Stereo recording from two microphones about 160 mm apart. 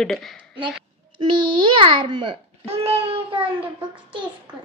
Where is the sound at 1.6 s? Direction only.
30° right (ahead or behind).